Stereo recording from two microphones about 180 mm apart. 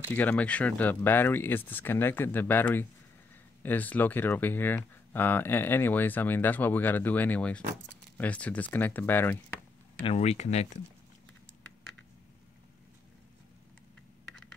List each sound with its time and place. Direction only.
0.1 s speech: 10° left (ahead or behind)
10.0 s speech: 35° left (ahead or behind)